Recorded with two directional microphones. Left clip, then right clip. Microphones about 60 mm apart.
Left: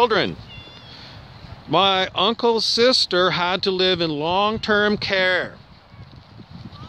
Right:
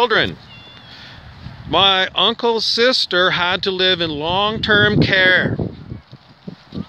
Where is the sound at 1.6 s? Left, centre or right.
Centre.